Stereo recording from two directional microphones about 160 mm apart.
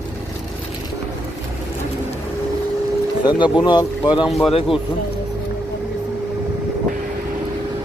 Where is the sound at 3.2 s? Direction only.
30° left (ahead or behind).